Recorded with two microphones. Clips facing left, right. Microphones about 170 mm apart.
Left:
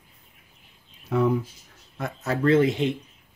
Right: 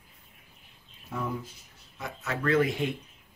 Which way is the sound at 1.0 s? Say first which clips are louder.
Left 12 dB; 75° left (ahead or behind).